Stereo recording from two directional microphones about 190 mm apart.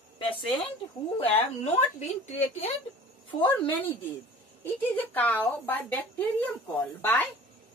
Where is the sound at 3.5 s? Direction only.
10° left (ahead or behind).